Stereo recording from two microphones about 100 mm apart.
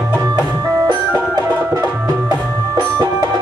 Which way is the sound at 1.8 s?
35° right (ahead or behind).